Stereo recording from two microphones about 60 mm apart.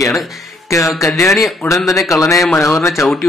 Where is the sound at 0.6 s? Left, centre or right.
Left.